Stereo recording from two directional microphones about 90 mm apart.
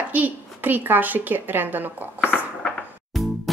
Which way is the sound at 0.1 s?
20° right (ahead or behind).